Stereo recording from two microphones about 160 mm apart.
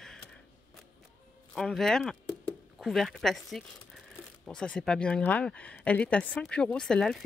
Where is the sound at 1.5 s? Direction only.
5° left (ahead or behind).